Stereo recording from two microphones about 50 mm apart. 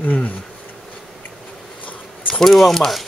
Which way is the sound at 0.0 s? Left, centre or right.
Left.